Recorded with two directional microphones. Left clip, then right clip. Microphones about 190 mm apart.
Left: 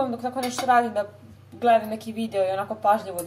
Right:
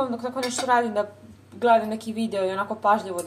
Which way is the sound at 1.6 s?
25° right (ahead or behind).